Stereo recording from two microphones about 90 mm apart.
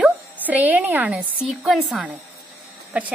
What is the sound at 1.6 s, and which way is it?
A woman's voice, 5° right (ahead or behind).